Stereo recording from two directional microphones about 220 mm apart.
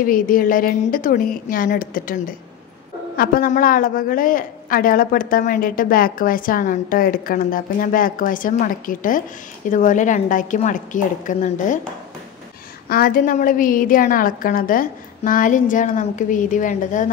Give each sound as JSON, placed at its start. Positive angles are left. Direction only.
{"t": 0.0, "sound": "a woman's voice", "side_deg": 40}
{"t": 12.8, "sound": "a woman's voice", "side_deg": 45}